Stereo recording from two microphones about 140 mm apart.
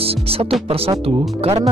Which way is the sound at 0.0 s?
45° right (ahead or behind).